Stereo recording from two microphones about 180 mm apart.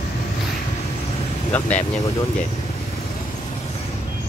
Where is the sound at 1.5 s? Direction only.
10° left (ahead or behind).